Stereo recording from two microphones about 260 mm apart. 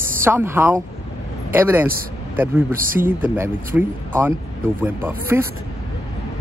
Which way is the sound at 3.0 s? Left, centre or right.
Centre.